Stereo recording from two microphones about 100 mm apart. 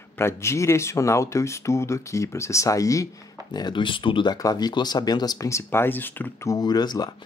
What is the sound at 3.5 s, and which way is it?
Speech, 50° left (ahead or behind).